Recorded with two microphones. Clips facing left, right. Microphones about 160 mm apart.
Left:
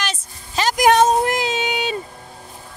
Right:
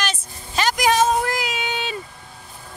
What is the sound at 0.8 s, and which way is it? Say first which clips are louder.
Speech: left 5 dB; 55° left (ahead or behind).